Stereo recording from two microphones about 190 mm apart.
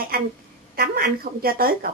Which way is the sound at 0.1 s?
50° right (ahead or behind).